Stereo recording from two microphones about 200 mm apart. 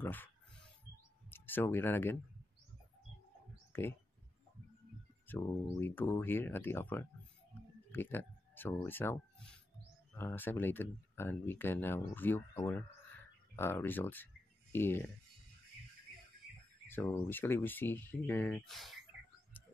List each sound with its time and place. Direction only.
0.0 s speech: 10° left (ahead or behind)
1.3 s speech: 10° left (ahead or behind)
3.7 s speech: 10° left (ahead or behind)
5.2 s speech: 10° left (ahead or behind)
16.8 s a sound: 10° left (ahead or behind)
17.3 s speech: 10° left (ahead or behind)
18.7 s speech: centre (ahead or behind)
19.6 s frog: 10° left (ahead or behind)